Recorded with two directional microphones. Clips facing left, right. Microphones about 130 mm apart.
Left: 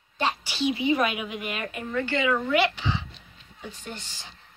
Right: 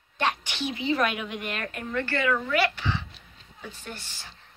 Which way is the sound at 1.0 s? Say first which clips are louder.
Left 1 dB; 5° left (ahead or behind).